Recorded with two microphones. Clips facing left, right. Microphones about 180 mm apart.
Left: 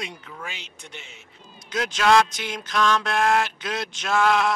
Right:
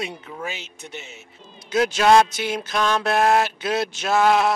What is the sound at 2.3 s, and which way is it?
Speech, 10° right (ahead or behind).